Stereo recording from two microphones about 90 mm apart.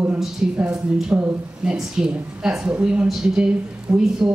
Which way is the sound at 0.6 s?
10° right (ahead or behind).